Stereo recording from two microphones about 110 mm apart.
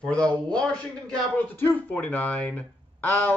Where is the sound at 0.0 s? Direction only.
10° left (ahead or behind).